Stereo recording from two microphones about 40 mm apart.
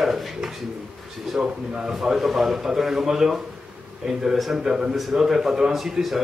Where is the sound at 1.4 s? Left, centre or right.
Right.